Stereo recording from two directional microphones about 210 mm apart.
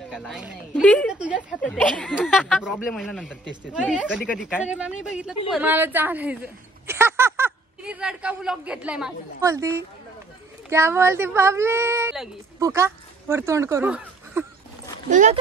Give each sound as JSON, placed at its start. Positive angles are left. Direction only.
{"t": 0.1, "sound": "a sound", "side_deg": -5}
{"t": 0.8, "sound": "speech", "side_deg": 0}
{"t": 1.7, "sound": "speech", "side_deg": 5}
{"t": 4.4, "sound": "speech", "side_deg": 10}
{"t": 5.0, "sound": "a woman's voice", "side_deg": -5}
{"t": 15.0, "sound": "speech", "side_deg": -35}